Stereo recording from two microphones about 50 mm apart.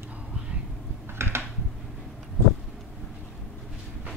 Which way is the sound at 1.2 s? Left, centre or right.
Right.